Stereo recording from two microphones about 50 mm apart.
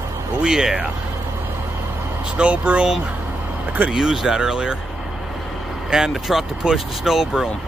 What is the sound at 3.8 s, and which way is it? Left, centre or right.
Speech, centre.